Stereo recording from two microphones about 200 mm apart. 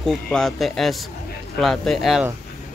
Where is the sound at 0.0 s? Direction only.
Centre (ahead or behind).